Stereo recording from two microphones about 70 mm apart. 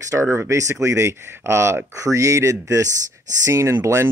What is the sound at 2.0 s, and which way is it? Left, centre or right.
Speech, right.